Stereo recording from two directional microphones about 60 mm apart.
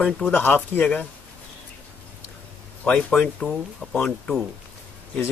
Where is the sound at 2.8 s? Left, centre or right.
Centre.